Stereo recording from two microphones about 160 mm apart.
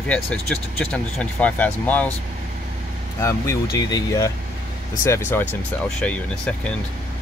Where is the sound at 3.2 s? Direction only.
20° left (ahead or behind).